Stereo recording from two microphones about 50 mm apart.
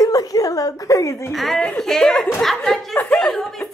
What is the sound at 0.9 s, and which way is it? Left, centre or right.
Speech, left.